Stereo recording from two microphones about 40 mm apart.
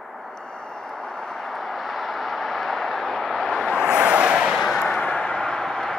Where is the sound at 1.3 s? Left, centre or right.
Centre.